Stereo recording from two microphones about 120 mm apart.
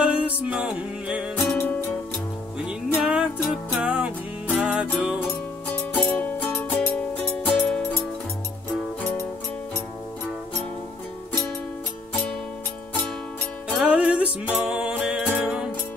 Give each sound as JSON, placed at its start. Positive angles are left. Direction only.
{"t": 0.0, "sound": "music", "side_deg": -10}
{"t": 1.3, "sound": "music", "side_deg": 15}
{"t": 2.6, "sound": "music", "side_deg": -10}
{"t": 5.7, "sound": "music", "side_deg": 10}
{"t": 13.7, "sound": "music", "side_deg": -5}